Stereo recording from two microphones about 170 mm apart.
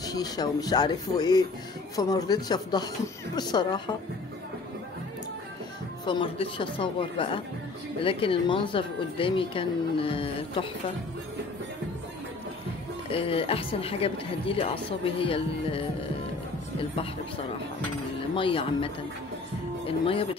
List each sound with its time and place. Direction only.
0.0 s speech: 25° left (ahead or behind)
6.0 s a woman's voice: 30° left (ahead or behind)
13.1 s a woman's voice: 35° left (ahead or behind)
18.3 s a woman's voice: 30° left (ahead or behind)